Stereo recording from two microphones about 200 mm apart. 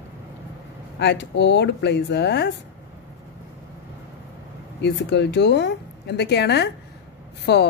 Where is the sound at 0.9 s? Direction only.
60° left (ahead or behind).